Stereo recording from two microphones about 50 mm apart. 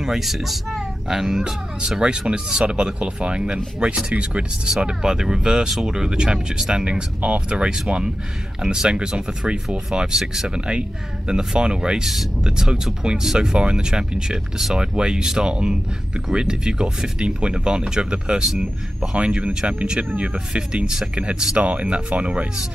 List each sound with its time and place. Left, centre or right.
0.0 s speech: centre; by 22.5 s right